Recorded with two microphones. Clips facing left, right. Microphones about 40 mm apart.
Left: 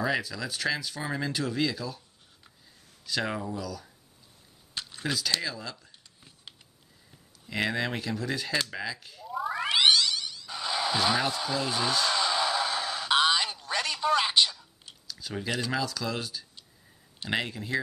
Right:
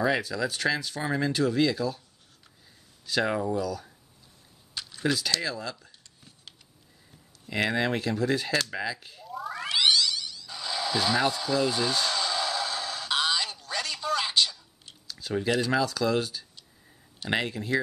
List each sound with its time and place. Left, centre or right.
0.0 s speech: centre
3.1 s speech: centre
5.0 s speech: centre
7.4 s speech: centre
9.3 s cat: centre
12.1 s a sound: centre
15.0 s speech: centre